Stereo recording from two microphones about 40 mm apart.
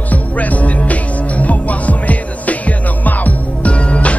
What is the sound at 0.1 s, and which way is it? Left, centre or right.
Music, left.